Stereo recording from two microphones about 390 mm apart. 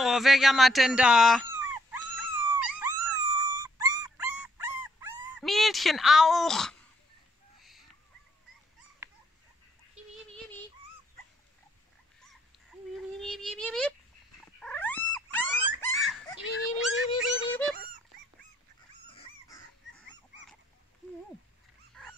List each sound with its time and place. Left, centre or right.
0.0 s speech: centre
1.6 s dog: centre
12.9 s a sound: centre
14.6 s cat: centre
15.8 s a sound: centre
17.2 s music: centre
19.1 s dog: centre
22.0 s dog: centre